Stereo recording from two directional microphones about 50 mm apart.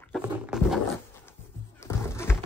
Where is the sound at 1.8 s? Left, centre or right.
Left.